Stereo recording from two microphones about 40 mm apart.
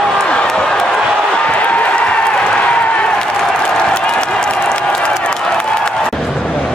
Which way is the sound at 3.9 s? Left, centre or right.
Left.